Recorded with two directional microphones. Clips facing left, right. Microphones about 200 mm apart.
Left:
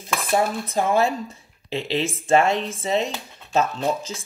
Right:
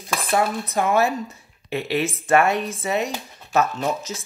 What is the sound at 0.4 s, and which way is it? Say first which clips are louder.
Speech: even; 30° left (ahead or behind).